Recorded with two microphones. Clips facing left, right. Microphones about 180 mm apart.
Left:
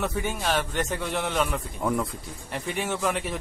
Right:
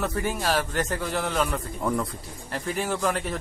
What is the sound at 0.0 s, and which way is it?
Speech, centre (ahead or behind).